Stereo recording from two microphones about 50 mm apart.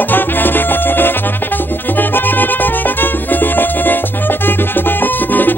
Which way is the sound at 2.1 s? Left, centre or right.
Left.